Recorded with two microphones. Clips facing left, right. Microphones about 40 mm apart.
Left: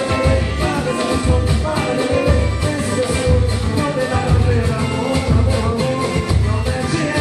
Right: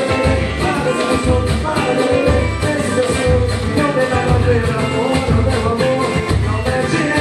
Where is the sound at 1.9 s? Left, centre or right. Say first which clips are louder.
Right 3 dB; centre.